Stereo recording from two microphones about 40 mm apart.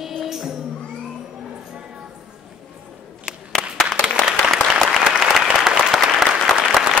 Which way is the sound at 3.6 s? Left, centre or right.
Left.